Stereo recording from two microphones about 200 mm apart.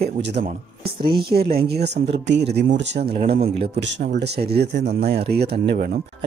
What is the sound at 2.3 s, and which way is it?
Speech, 55° right (ahead or behind).